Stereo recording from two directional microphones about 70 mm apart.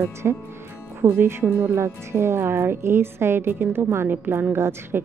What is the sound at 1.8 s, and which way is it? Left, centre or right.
A woman's voice, right.